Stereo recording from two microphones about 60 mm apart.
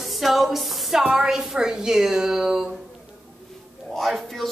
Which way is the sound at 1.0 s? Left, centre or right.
Centre.